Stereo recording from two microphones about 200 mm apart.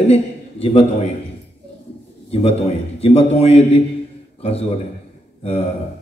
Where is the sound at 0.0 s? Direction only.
30° left (ahead or behind).